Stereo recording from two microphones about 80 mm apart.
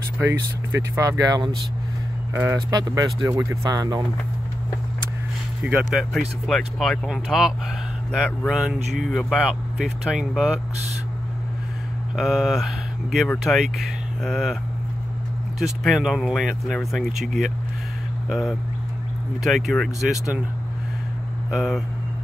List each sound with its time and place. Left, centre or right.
0.2 s speech: right
1.1 s speech: right
2.5 s speech: right
5.6 s speech: centre
6.1 s speech: centre
12.2 s speech: centre
15.6 s speech: centre
21.5 s speech: centre